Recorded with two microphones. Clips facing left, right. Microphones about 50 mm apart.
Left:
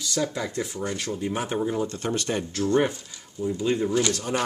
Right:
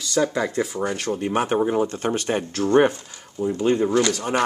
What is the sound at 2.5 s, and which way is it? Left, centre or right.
Speech, right.